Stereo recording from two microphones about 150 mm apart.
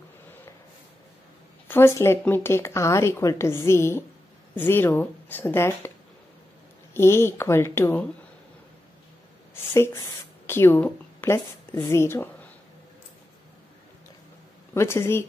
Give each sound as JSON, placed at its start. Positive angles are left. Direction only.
{"t": 1.7, "sound": "speech", "side_deg": 15}
{"t": 6.9, "sound": "speech", "side_deg": 15}
{"t": 10.4, "sound": "a woman's voice", "side_deg": 15}
{"t": 14.7, "sound": "speech", "side_deg": 15}